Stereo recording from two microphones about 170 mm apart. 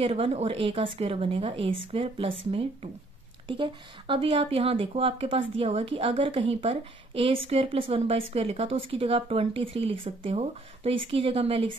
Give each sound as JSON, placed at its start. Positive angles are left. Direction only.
{"t": 0.0, "sound": "speech", "side_deg": -35}